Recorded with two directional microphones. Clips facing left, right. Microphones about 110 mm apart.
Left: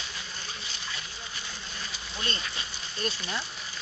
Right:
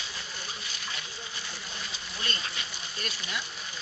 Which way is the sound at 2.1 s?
30° left (ahead or behind).